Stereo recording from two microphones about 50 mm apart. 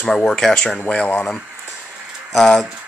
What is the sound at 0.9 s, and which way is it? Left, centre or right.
Speech, left.